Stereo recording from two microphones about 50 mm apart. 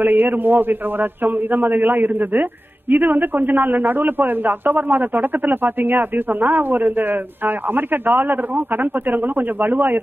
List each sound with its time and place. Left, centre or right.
0.0 s a man's voice: right